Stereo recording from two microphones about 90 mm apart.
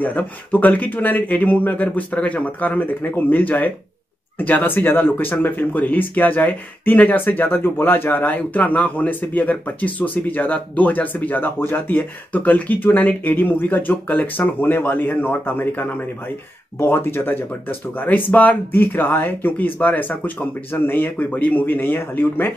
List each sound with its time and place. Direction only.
0.0 s speech: 20° left (ahead or behind)